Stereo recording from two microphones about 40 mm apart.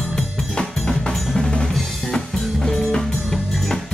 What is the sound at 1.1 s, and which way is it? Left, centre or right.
Percussion, centre.